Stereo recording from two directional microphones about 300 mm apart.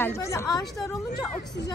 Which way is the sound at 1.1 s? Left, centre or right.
Left.